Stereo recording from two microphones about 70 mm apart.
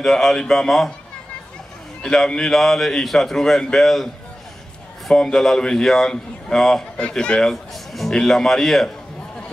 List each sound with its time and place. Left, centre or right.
0.0 s a man's voice: centre
2.0 s a man's voice: centre
5.1 s a man's voice: centre